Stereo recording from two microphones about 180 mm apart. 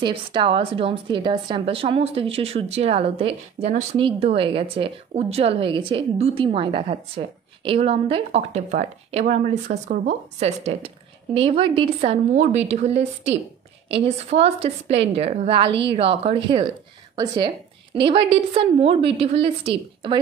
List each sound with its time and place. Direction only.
0.0 s a woman's voice: 30° right (ahead or behind)
14.0 s a woman's voice: 30° right (ahead or behind)